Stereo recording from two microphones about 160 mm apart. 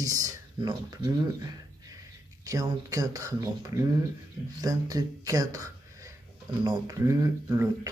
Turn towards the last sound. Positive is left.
turn(degrees=-20)  # may be behind; listen again after turning